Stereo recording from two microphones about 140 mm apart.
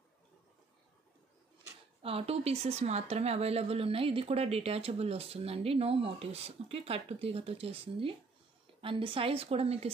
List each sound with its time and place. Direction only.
2.0 s a woman's voice: 45° right (ahead or behind)